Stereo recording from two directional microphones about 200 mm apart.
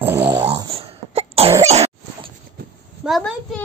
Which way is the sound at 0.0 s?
10° right (ahead or behind).